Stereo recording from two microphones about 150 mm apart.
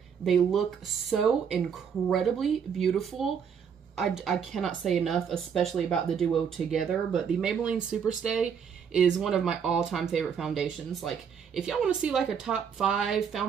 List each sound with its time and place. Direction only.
0.2 s speech: centre (ahead or behind)